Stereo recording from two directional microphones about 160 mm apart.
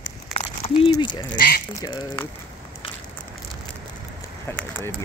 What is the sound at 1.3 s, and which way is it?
Speech, 70° left (ahead or behind).